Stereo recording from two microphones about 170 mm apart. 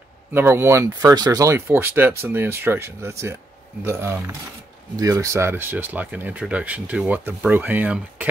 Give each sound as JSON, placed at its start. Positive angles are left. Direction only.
{"t": 0.3, "sound": "speech", "side_deg": -15}